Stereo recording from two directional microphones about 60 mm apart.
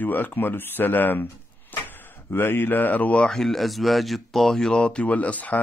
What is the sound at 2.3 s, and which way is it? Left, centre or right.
Speech, left.